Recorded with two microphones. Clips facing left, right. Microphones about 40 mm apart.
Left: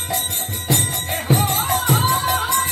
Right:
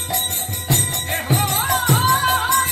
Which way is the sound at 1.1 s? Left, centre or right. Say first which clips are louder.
Left 1 dB; right.